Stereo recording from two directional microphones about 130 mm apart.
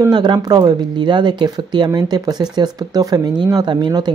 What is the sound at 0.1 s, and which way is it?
Speech, 35° right (ahead or behind).